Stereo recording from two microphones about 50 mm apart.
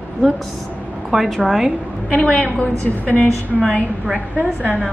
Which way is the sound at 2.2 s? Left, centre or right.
Left.